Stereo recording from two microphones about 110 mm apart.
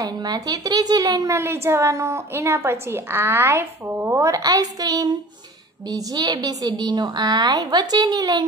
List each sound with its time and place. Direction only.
0.0 s a woman's voice: 35° right (ahead or behind)